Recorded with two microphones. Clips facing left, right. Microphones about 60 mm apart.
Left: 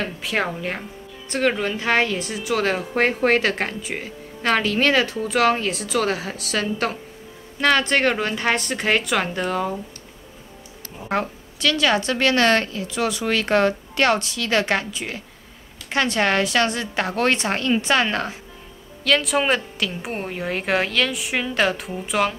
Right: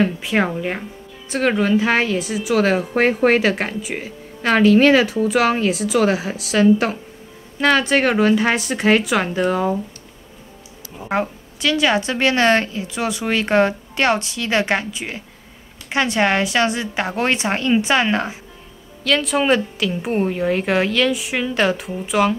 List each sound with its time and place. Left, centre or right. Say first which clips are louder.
0.0 s a woman's voice: right 6 dB; centre
11.0 s a woman's voice: right 3 dB; centre
19.0 s a woman's voice: right 2 dB; centre